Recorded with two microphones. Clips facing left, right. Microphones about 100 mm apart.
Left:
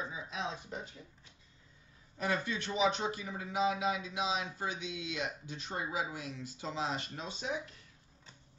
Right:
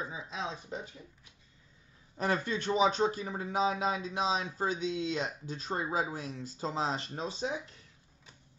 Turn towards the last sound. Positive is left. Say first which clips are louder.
# right 4 dB
turn(degrees=-35)  # may be behind; listen again after turning